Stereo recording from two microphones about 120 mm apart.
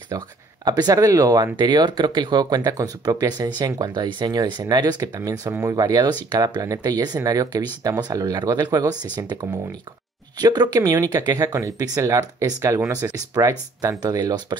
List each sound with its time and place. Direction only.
0.1 s speech: 30° right (ahead or behind)
5.8 s speech: 35° right (ahead or behind)